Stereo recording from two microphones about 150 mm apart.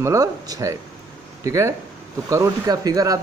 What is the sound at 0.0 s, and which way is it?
Speech, 20° right (ahead or behind).